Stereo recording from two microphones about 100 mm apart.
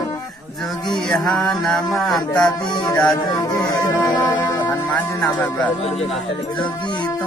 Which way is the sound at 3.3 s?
35° left (ahead or behind).